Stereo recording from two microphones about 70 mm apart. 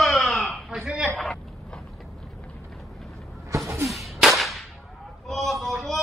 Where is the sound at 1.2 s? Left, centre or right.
Centre.